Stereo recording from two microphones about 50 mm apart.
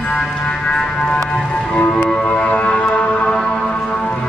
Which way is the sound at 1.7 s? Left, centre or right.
Left.